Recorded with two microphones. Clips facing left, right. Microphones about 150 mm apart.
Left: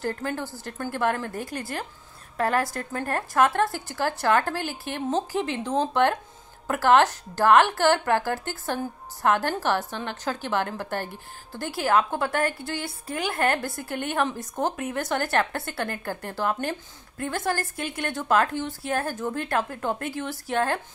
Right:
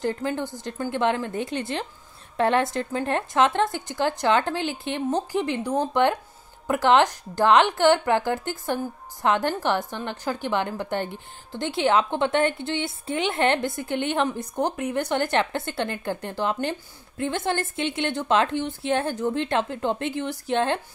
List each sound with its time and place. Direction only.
0.0 s a woman's voice: 15° right (ahead or behind)